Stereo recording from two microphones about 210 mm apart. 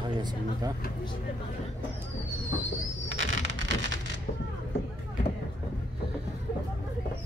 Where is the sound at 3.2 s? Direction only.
65° right (ahead or behind).